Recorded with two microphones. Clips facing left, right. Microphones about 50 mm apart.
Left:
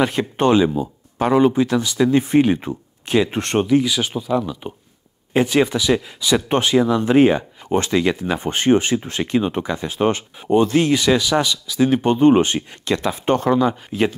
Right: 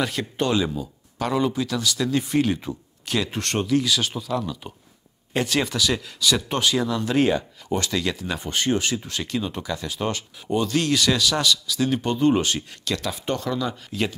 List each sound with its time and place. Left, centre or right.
0.0 s speech: left